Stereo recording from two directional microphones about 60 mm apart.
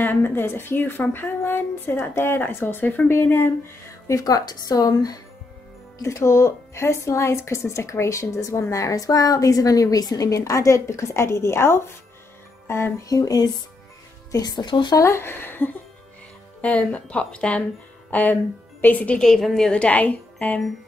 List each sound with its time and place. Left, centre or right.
0.0 s a woman's voice: left
4.1 s speech: left
6.0 s speech: left
12.6 s music: left
13.1 s speech: left
15.0 s speech: left
15.2 s a woman's voice: left
16.6 s speech: left
18.1 s speech: left
19.1 s a woman's voice: centre
19.7 s speech: left